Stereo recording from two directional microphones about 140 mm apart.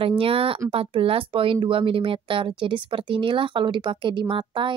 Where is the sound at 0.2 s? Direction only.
40° right (ahead or behind).